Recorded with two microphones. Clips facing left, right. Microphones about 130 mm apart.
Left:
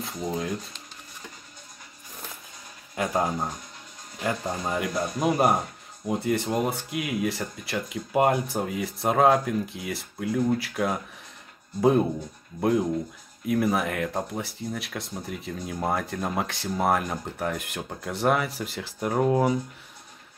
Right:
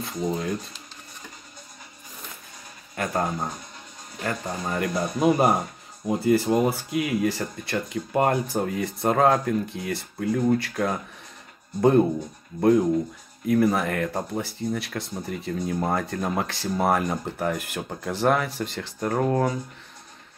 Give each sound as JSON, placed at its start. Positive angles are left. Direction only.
{"t": 0.0, "sound": "speech", "side_deg": 0}
{"t": 3.0, "sound": "speech", "side_deg": 10}